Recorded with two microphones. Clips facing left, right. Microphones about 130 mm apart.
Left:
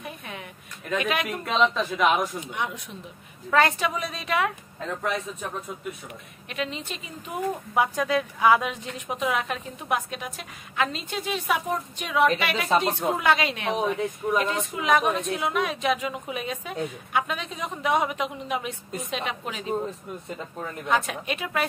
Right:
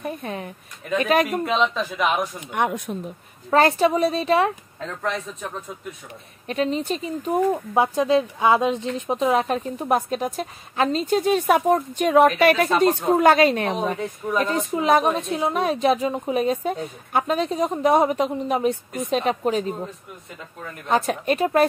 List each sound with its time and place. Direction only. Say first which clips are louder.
0.0 s a woman's voice: right 8 dB; 40° right (ahead or behind)
1.4 s speech: right 2 dB; centre (ahead or behind)
2.4 s a woman's voice: right 8 dB; 55° right (ahead or behind)
3.4 s a woman's voice: right 5 dB; 35° right (ahead or behind)
4.7 s speech: right 1 dB; 5° left (ahead or behind)
6.4 s a woman's voice: right 9 dB; 35° right (ahead or behind)
7.7 s a woman's voice: right 3 dB; 25° right (ahead or behind)
20.9 s a woman's voice: right 6 dB; 40° right (ahead or behind)